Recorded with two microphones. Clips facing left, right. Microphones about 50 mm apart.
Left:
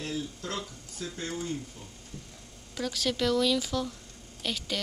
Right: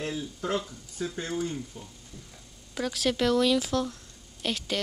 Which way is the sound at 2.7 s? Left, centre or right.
Centre.